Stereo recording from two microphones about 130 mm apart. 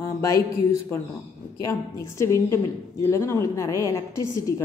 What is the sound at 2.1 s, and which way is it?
A woman's voice, 20° left (ahead or behind).